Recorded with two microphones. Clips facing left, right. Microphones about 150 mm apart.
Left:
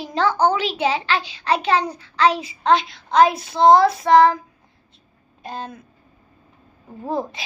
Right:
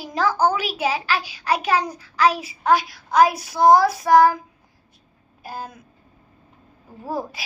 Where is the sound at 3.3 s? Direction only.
25° left (ahead or behind).